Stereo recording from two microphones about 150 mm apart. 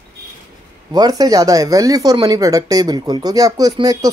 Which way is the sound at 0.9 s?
25° right (ahead or behind).